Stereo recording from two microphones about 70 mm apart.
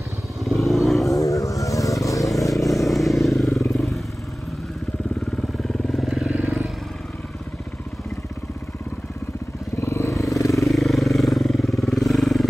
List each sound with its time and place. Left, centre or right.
0.4 s vehicle: centre
1.1 s vehicle: left
2.7 s vehicle: centre
3.7 s motorcycle: centre
5.6 s motorcycle: centre
6.2 s vehicle: centre
9.8 s vehicle: left
10.7 s vehicle: centre